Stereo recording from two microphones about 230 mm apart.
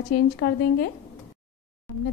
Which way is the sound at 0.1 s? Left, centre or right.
Left.